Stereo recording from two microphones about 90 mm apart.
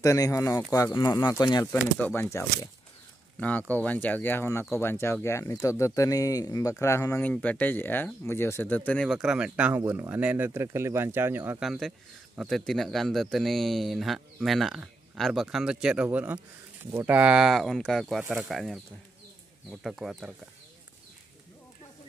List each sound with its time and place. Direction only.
0.0 s speech: 35° left (ahead or behind)
0.9 s speech: 50° left (ahead or behind)
2.0 s speech: 20° left (ahead or behind)
2.2 s speech: 35° left (ahead or behind)
3.3 s speech: 15° left (ahead or behind)
7.2 s speech: 15° left (ahead or behind)
9.0 s speech: 5° right (ahead or behind); by 11.6 s 25° right (ahead or behind)
11.6 s a man's voice: centre (ahead or behind)